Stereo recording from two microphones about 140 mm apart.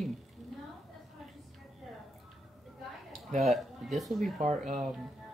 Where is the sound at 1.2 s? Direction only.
Centre (ahead or behind).